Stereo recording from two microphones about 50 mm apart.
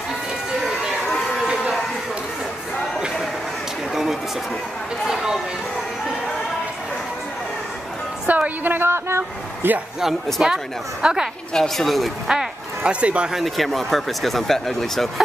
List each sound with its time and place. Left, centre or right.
3.9 s a sound: centre
8.3 s music: right
8.8 s vehicle: right
10.4 s a woman's voice: centre
11.5 s speech: centre
12.3 s a sound: centre
13.0 s speech: right
13.3 s speech: centre